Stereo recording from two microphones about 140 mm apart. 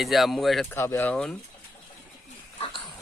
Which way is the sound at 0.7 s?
15° left (ahead or behind).